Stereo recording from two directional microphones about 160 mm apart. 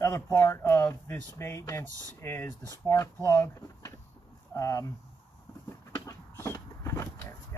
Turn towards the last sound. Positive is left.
turn(degrees=20)  # may be behind; listen again after turning